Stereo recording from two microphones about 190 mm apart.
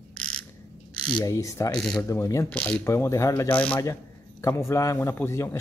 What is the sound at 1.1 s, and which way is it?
Speech, 15° left (ahead or behind).